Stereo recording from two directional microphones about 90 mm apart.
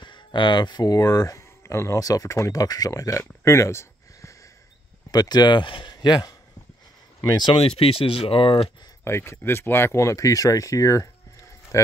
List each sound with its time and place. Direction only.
0.0 s speech: 60° left (ahead or behind); by 4.4 s 35° left (ahead or behind)
5.1 s speech: 50° left (ahead or behind); by 5.9 s 65° left (ahead or behind)
5.9 s speech: 45° left (ahead or behind)
7.5 s speech: 90° left
9.0 s speech: 30° left (ahead or behind)